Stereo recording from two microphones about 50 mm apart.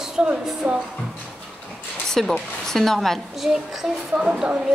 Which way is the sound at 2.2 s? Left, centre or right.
Centre.